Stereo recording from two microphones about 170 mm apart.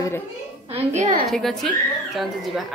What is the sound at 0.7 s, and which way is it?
Speech, 40° right (ahead or behind).